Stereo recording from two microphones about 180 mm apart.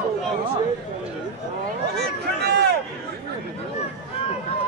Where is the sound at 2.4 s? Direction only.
70° right (ahead or behind).